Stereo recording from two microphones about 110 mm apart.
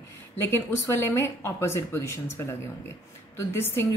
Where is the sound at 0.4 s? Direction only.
20° left (ahead or behind).